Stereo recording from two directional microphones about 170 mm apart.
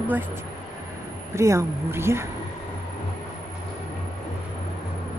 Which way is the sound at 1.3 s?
15° right (ahead or behind).